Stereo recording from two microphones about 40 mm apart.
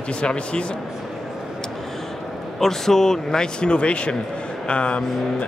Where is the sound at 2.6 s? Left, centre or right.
Centre.